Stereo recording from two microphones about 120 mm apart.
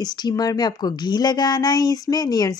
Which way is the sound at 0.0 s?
35° left (ahead or behind).